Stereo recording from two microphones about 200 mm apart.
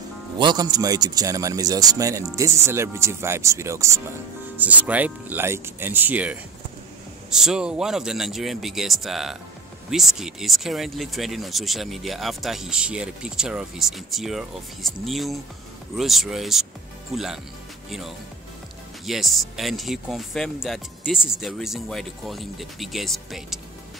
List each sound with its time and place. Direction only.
0.4 s a man's voice: 20° right (ahead or behind); by 23.6 s centre (ahead or behind)